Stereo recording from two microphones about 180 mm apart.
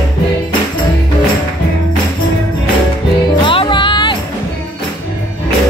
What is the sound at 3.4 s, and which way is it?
Music, 30° left (ahead or behind).